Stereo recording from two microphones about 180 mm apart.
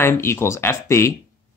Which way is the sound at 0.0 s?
15° left (ahead or behind).